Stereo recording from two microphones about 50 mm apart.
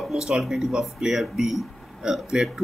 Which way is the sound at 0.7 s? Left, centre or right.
Centre.